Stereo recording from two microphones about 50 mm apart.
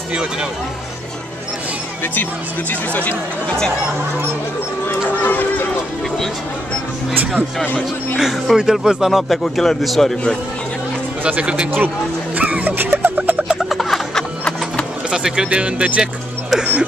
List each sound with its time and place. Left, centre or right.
0.1 s speech: centre
2.7 s speech: left
4.8 s speech: left
7.6 s speech: left
8.2 s a man's voice: centre
9.3 s a man's voice: centre
11.2 s speech: right
12.4 s music: right
12.7 s music: right
13.6 s snicker: centre
15.0 s speech: centre